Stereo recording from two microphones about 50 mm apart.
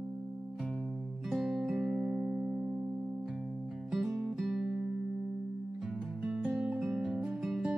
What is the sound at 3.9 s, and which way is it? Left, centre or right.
Music, centre.